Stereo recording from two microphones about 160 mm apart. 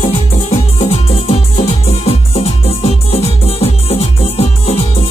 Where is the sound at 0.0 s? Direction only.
40° left (ahead or behind).